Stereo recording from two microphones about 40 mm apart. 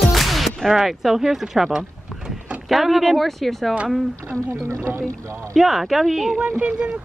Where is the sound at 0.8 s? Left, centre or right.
Centre.